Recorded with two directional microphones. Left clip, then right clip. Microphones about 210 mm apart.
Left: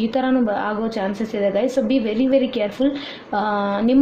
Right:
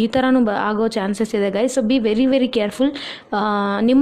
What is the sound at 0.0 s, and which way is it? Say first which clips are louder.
A woman's voice: right 3 dB; 45° right (ahead or behind).